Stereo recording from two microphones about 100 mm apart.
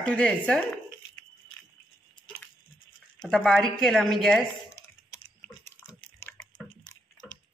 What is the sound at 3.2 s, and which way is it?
A woman's voice, 5° left (ahead or behind).